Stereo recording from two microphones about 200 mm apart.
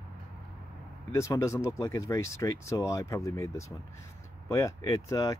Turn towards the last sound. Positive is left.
turn(degrees=20)  # may be behind; listen again after turning